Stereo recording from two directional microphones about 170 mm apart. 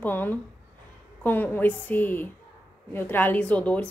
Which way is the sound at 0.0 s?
10° left (ahead or behind).